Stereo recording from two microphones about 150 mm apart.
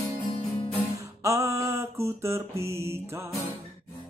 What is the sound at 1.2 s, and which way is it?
Mantra, 20° right (ahead or behind).